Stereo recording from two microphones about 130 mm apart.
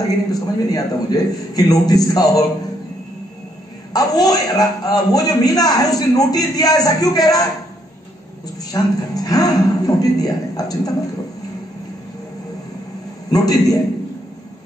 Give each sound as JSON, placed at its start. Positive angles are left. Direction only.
{"t": 0.3, "sound": "a man's voice", "side_deg": 30}
{"t": 3.9, "sound": "a man's voice", "side_deg": 30}
{"t": 8.7, "sound": "a man's voice", "side_deg": 30}
{"t": 13.3, "sound": "a man's voice", "side_deg": 30}